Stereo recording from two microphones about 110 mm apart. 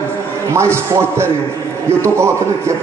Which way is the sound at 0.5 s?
25° right (ahead or behind).